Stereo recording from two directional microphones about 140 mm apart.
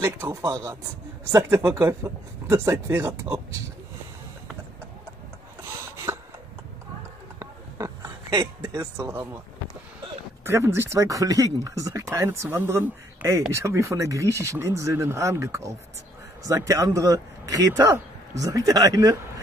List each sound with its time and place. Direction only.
0.0 s speech: 20° right (ahead or behind)
1.3 s speech: 15° right (ahead or behind)
6.1 s a sound: 15° right (ahead or behind)
7.3 s oink: 25° right (ahead or behind)
9.0 s speech: 20° right (ahead or behind)
10.4 s speech: 15° right (ahead or behind)